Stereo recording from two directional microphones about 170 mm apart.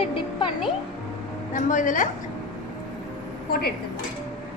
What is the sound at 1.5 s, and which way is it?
Speech, 50° left (ahead or behind).